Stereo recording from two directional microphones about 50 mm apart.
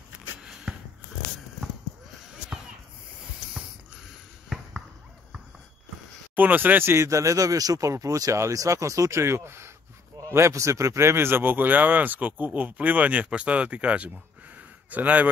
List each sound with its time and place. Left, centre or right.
4.5 s basketball bounce: centre
6.3 s speech: right
7.0 s a man's voice: right
10.3 s speech: right
14.5 s a sound: right